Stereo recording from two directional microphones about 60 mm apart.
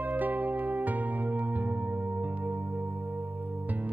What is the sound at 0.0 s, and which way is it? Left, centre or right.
Music, right.